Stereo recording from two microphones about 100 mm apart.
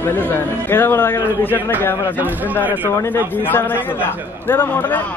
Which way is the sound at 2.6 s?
15° right (ahead or behind).